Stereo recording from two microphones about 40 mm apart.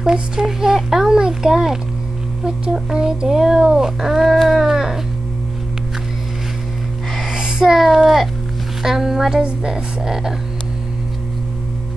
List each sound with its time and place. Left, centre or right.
0.0 s a child's voice: centre
7.2 s a child's voice: centre